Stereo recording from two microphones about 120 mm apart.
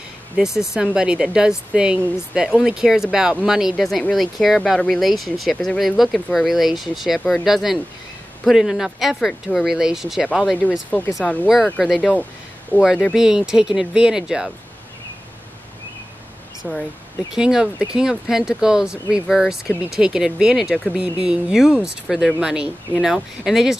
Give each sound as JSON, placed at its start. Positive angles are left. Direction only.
{"t": 0.4, "sound": "speech", "side_deg": -5}
{"t": 11.8, "sound": "speech", "side_deg": -5}
{"t": 12.7, "sound": "speech", "side_deg": 15}
{"t": 13.1, "sound": "speech", "side_deg": -5}
{"t": 16.6, "sound": "speech", "side_deg": -5}